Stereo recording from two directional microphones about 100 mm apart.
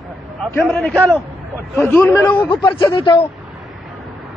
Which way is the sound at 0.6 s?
Centre (ahead or behind).